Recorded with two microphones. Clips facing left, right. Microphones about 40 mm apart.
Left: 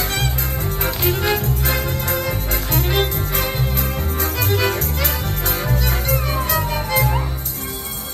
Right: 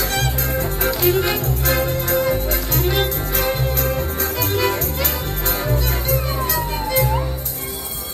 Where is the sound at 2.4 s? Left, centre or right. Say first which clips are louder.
Right 1 dB; left.